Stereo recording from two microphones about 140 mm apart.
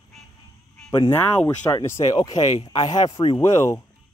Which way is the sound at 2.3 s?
50° left (ahead or behind).